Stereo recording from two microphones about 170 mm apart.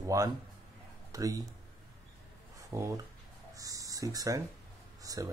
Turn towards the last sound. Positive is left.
turn(degrees=-20)  # may be behind; listen again after turning